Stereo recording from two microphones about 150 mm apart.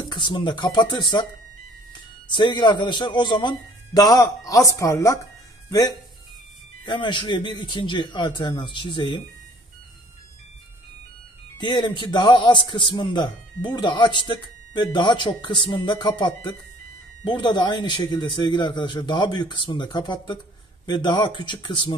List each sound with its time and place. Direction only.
0.0 s a man's voice: 30° left (ahead or behind)
2.2 s a man's voice: 30° left (ahead or behind)
11.5 s a man's voice: 30° left (ahead or behind)